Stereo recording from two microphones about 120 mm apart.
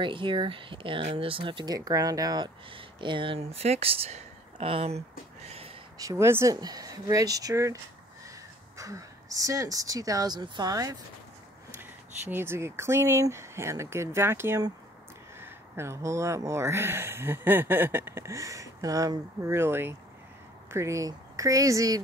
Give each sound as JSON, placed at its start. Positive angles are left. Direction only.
{"t": 0.0, "sound": "speech", "side_deg": -45}
{"t": 5.9, "sound": "speech", "side_deg": -25}
{"t": 6.5, "sound": "speech", "side_deg": -35}
{"t": 11.8, "sound": "speech", "side_deg": -20}